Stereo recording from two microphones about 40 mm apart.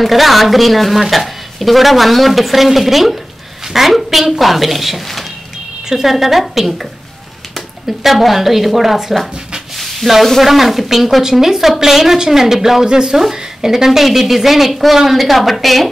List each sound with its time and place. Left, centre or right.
0.0 s a woman's voice: centre
12.8 s a woman's voice: centre